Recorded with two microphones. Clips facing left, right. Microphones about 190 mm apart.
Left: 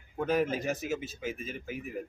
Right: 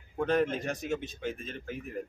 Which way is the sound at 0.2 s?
5° left (ahead or behind).